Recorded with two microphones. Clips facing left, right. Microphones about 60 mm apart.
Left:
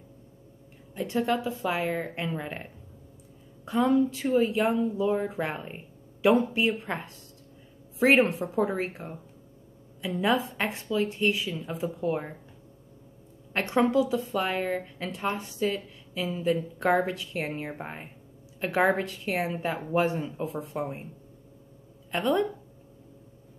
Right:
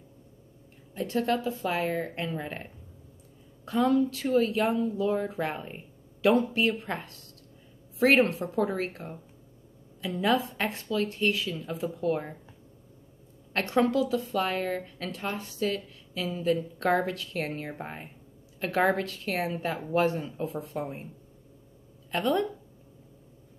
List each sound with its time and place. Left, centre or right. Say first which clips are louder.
0.9 s a woman's voice: even; centre
13.5 s a woman's voice: left 1 dB; centre
22.1 s a woman's voice: left 1 dB; centre